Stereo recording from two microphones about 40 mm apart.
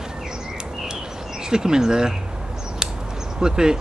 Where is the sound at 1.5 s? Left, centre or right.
Centre.